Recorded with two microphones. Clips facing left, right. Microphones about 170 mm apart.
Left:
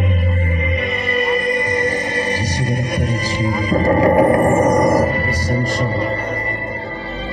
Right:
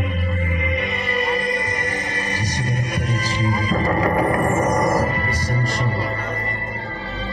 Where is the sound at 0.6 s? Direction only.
25° left (ahead or behind).